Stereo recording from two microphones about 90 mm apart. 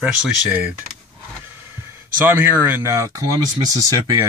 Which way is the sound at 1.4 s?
25° right (ahead or behind).